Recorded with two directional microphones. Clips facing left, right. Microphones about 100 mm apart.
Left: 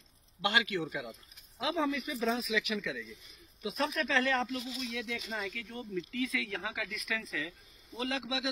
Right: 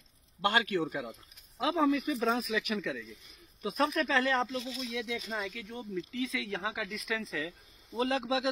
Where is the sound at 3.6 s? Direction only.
40° right (ahead or behind).